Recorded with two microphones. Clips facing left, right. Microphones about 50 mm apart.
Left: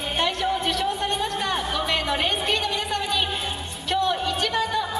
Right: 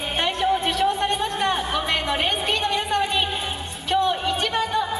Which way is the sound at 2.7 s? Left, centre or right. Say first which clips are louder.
Right 4 dB; centre.